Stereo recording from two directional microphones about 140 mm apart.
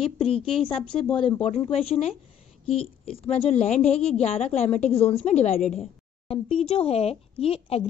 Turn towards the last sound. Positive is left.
turn(degrees=45)  # may be behind; listen again after turning